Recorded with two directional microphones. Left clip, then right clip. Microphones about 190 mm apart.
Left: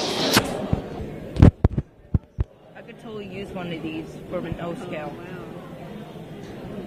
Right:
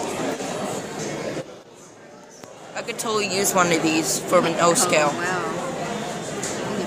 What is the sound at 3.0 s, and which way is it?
Speech, 15° right (ahead or behind).